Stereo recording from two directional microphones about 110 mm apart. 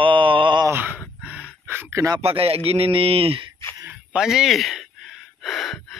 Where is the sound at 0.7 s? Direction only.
20° right (ahead or behind).